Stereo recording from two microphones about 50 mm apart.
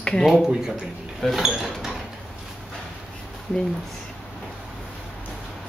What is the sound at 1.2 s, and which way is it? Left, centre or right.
Speech, centre.